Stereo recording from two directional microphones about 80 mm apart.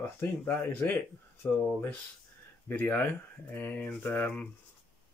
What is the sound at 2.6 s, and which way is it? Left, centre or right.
Speech, left.